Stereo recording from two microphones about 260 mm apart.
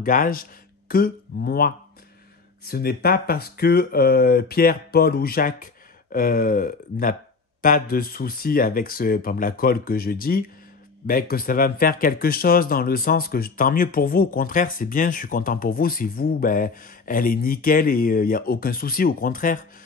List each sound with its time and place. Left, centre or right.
0.0 s speech: left